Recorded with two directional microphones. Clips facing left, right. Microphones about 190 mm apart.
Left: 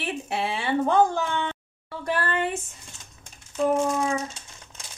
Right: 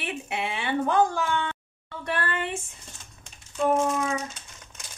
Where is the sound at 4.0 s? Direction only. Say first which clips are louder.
Left 2 dB; 30° left (ahead or behind).